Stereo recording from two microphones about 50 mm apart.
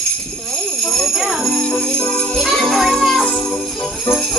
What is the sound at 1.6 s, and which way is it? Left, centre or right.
Jingle bell, centre.